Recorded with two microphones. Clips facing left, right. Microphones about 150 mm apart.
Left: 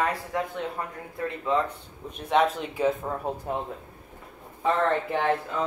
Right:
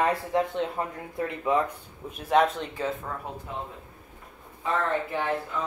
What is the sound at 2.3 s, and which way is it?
Speech, centre (ahead or behind).